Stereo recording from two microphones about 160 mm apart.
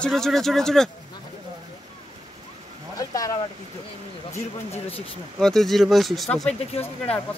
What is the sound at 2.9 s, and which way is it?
Speech, 20° left (ahead or behind).